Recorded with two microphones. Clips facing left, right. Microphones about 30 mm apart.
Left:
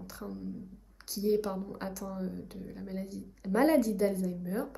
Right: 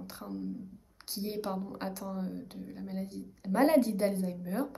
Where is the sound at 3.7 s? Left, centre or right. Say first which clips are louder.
Even; right.